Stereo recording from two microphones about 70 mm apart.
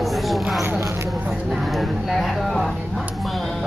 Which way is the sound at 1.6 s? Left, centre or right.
Centre.